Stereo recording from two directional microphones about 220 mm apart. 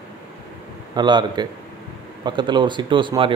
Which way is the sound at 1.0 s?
20° right (ahead or behind).